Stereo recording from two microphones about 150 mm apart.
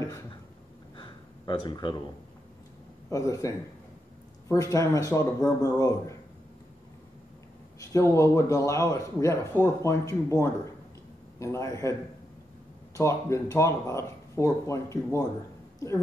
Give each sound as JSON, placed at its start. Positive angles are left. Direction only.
{"t": 0.9, "sound": "a sound", "side_deg": 35}
{"t": 3.1, "sound": "a man's voice", "side_deg": 20}
{"t": 7.8, "sound": "a man's voice", "side_deg": 20}
{"t": 12.9, "sound": "a man's voice", "side_deg": 20}